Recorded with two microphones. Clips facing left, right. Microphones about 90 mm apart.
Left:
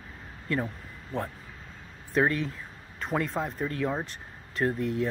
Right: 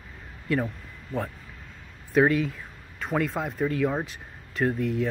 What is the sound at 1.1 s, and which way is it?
Speech, 35° left (ahead or behind).